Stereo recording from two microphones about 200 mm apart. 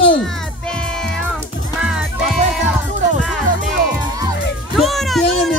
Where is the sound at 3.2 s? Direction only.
Centre (ahead or behind).